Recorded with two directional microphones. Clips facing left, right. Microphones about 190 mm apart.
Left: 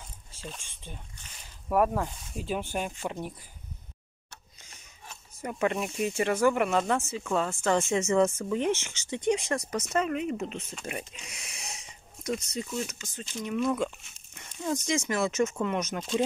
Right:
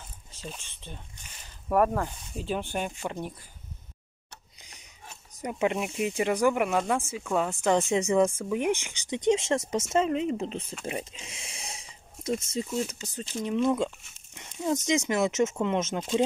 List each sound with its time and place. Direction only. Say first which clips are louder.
0.6 s speech: right 1 dB; 10° left (ahead or behind)
4.6 s a sound: right 1 dB; 15° right (ahead or behind)
5.4 s speech: right 1 dB; 15° right (ahead or behind)